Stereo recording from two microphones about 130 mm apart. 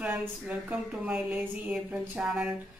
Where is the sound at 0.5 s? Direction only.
10° right (ahead or behind).